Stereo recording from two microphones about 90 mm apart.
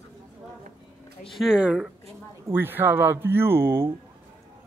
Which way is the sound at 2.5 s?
25° right (ahead or behind).